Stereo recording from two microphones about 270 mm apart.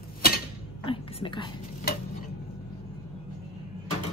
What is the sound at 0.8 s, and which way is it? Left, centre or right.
Speech, centre.